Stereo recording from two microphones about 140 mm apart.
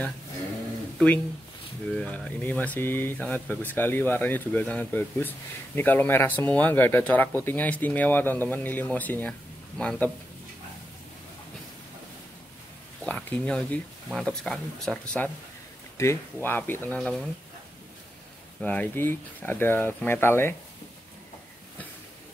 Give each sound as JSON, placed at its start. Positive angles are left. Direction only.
{"t": 0.9, "sound": "speech", "side_deg": 10}
{"t": 13.0, "sound": "speech", "side_deg": 10}
{"t": 18.6, "sound": "speech", "side_deg": 10}